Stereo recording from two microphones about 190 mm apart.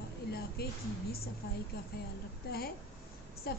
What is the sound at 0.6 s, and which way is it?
Speech, 55° left (ahead or behind).